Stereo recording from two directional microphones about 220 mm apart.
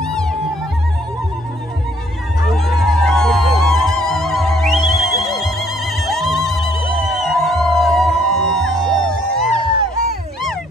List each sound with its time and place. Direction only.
0.0 s music: 5° left (ahead or behind)
2.4 s music: centre (ahead or behind)
9.7 s music: 25° right (ahead or behind)